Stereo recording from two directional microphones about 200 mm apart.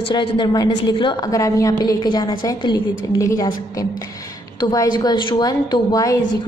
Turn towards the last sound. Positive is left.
turn(degrees=15)  # may be behind; listen again after turning